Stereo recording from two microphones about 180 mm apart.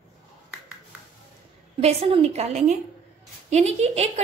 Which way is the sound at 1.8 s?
35° right (ahead or behind).